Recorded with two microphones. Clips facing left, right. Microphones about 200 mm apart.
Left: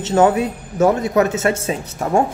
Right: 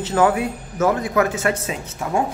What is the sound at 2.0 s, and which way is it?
Speech, 45° left (ahead or behind).